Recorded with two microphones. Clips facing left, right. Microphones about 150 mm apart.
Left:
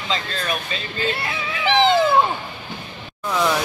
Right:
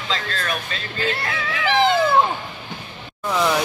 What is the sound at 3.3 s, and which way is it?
Speech, 5° right (ahead or behind).